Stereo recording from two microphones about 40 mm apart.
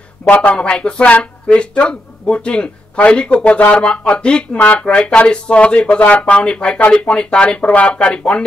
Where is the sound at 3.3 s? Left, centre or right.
Left.